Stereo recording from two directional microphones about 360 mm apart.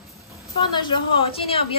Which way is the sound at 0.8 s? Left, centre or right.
Centre.